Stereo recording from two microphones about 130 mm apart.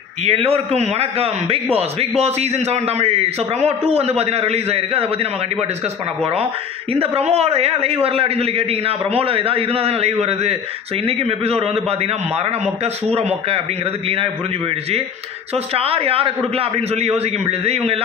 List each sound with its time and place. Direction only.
0.2 s a man's voice: 55° right (ahead or behind)
6.9 s a man's voice: 50° right (ahead or behind)
15.5 s a man's voice: 50° right (ahead or behind)